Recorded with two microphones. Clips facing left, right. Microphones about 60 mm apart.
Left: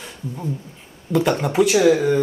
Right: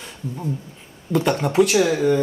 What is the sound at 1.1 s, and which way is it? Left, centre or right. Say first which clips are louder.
Speech: left 1 dB; centre.